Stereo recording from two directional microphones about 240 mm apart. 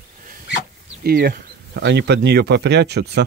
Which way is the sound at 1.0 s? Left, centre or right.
Right.